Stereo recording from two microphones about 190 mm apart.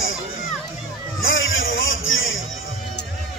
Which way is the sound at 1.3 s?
90° left.